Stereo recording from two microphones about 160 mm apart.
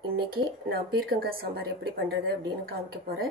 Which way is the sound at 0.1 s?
70° right (ahead or behind).